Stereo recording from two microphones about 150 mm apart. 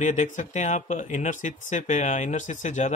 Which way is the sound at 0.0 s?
55° left (ahead or behind).